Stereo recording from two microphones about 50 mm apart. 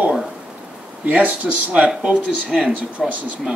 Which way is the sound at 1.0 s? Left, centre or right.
Right.